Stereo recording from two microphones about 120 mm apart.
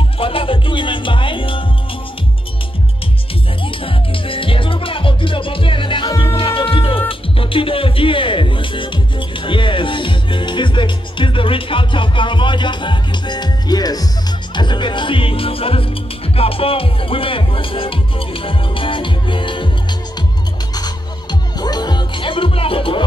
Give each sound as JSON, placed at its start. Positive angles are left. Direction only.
{"t": 0.2, "sound": "music", "side_deg": 50}
{"t": 3.6, "sound": "music", "side_deg": 45}